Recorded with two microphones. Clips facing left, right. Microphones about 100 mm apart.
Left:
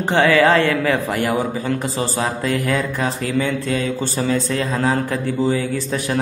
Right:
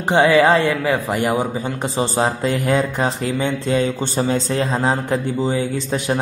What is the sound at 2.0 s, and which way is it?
A man's voice, 30° right (ahead or behind).